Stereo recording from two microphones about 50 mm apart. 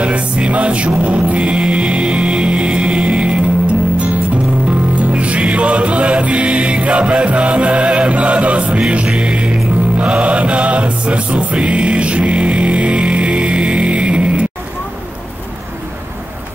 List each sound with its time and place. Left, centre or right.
0.0 s music: right
4.6 s music: right